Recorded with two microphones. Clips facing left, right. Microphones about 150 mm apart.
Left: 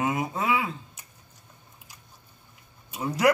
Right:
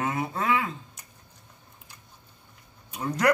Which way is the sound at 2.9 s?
10° left (ahead or behind).